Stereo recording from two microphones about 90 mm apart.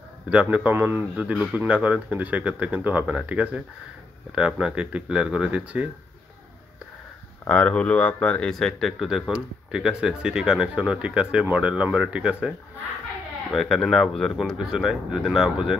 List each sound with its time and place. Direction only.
0.3 s speech: 15° right (ahead or behind)
7.4 s speech: 15° left (ahead or behind); by 12.5 s 10° right (ahead or behind)
13.5 s speech: centre (ahead or behind)